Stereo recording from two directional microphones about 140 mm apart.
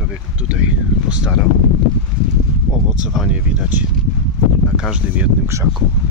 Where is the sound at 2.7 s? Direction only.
5° left (ahead or behind).